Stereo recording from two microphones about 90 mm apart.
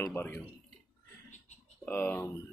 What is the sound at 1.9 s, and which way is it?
Speech, 20° left (ahead or behind).